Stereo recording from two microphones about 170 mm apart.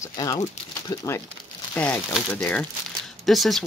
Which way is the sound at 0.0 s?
20° left (ahead or behind).